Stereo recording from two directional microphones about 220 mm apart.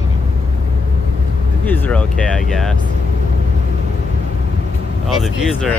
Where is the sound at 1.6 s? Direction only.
5° left (ahead or behind).